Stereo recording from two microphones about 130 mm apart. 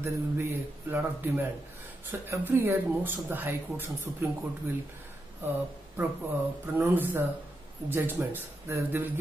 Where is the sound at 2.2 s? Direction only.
20° right (ahead or behind).